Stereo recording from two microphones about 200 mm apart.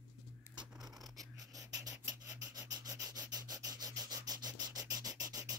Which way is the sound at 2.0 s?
15° right (ahead or behind).